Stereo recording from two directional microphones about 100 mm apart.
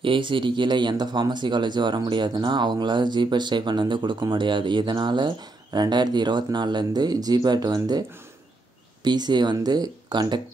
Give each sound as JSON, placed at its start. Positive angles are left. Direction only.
{"t": 0.0, "sound": "speech", "side_deg": -55}
{"t": 9.0, "sound": "speech", "side_deg": -45}